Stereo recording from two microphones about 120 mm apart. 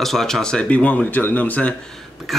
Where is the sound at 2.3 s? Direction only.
Centre (ahead or behind).